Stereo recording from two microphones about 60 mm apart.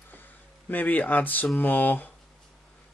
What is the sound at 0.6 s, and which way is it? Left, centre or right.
Speech, left.